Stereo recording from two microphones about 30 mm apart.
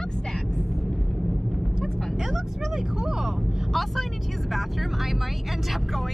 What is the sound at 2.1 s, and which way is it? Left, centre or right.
Vehicle, centre.